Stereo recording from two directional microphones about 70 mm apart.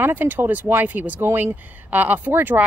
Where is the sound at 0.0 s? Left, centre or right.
Right.